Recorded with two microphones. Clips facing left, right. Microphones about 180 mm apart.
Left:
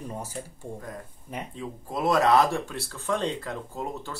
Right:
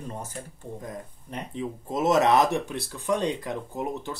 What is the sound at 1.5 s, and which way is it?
Speech, 20° right (ahead or behind).